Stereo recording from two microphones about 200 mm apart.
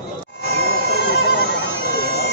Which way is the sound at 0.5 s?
55° left (ahead or behind).